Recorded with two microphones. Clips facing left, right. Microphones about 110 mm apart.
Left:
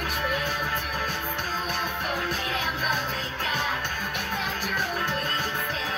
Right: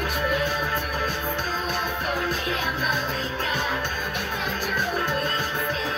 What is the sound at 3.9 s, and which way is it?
Music, 25° right (ahead or behind).